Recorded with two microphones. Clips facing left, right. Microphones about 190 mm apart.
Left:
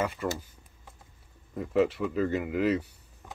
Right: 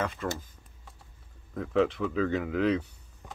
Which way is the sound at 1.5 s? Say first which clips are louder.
Left 1 dB; 5° left (ahead or behind).